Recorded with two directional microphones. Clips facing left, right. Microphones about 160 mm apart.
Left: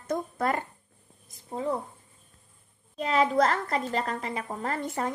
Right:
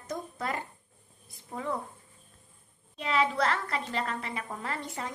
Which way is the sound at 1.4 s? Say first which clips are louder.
Left 5 dB; 30° left (ahead or behind).